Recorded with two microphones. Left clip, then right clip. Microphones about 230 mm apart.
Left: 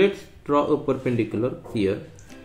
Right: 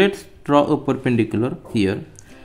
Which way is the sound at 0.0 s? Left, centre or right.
Right.